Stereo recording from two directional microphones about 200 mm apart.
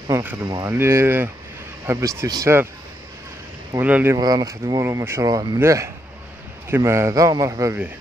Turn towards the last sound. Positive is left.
turn(degrees=-15)  # may be behind; listen again after turning